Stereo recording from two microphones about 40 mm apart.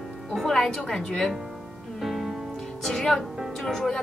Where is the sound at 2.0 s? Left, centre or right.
Centre.